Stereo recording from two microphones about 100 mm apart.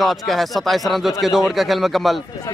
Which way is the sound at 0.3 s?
Centre (ahead or behind).